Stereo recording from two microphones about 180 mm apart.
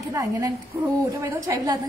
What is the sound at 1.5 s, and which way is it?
Speech, 15° right (ahead or behind).